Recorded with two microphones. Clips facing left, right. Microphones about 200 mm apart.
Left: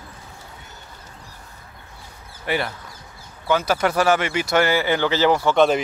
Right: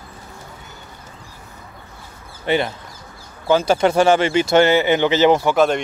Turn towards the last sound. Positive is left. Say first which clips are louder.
# even
turn(degrees=0)  # may be behind; listen again after turning